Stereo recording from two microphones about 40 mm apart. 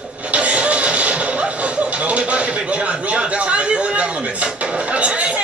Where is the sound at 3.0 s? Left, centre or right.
Right.